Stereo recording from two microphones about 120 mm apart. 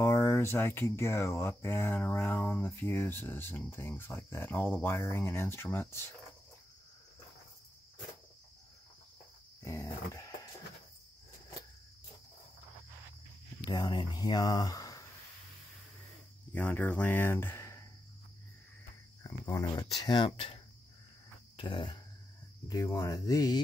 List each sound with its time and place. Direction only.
0.0 s speech: 20° left (ahead or behind)
9.7 s dog: 25° left (ahead or behind)
13.7 s speech: 35° left (ahead or behind)
16.5 s speech: 15° left (ahead or behind)
19.2 s speech: 30° left (ahead or behind)
22.7 s speech: 30° left (ahead or behind)